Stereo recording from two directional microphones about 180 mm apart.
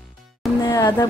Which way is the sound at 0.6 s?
20° left (ahead or behind).